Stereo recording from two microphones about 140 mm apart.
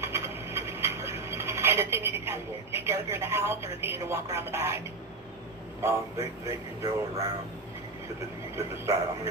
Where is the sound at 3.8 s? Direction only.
20° right (ahead or behind).